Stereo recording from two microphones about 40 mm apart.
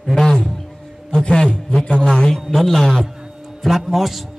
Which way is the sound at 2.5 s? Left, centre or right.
Centre.